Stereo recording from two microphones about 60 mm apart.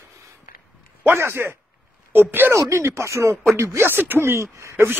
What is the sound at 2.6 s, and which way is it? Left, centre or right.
Speech, right.